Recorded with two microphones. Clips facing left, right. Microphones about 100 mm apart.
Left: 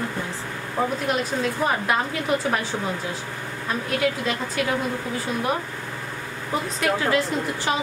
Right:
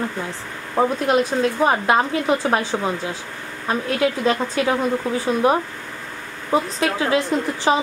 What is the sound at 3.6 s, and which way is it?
Speech, 30° right (ahead or behind).